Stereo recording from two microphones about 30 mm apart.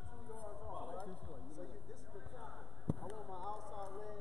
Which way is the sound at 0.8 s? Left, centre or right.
Left.